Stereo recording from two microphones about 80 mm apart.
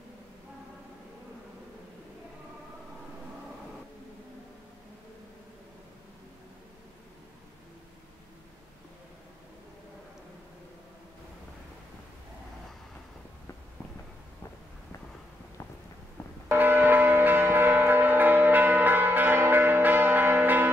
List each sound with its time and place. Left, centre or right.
16.4 s church bell: right